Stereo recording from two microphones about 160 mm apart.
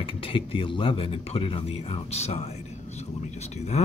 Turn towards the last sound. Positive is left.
turn(degrees=45)  # may be behind; listen again after turning